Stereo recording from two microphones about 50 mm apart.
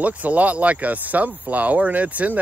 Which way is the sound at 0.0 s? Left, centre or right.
Right.